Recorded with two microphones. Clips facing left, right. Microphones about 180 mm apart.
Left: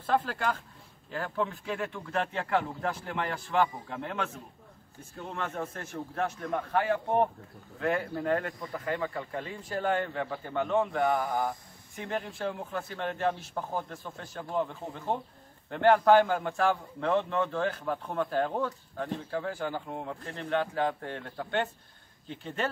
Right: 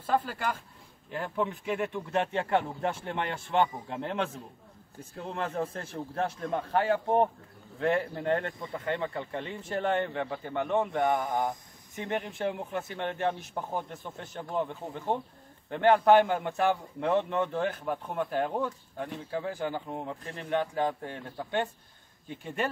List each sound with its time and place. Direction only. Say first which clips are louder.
0.0 s a man's voice: left 1 dB; 10° right (ahead or behind)
1.1 s speech: right 1 dB; 20° right (ahead or behind)
5.3 s a man's voice: right 3 dB; 35° right (ahead or behind); by 21.6 s 10° right (ahead or behind)